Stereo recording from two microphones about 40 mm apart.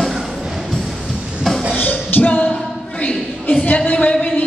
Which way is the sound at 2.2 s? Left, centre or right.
Left.